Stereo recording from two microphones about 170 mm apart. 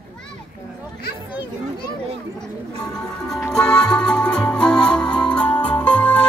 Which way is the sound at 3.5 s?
5° left (ahead or behind).